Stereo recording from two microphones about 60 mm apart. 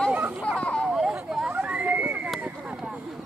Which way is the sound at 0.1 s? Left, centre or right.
Right.